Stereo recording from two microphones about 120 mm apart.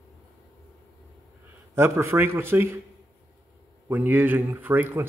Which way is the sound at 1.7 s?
20° right (ahead or behind).